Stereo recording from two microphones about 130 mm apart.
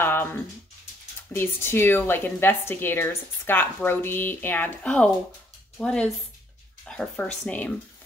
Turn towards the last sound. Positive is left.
turn(degrees=10)  # may be behind; listen again after turning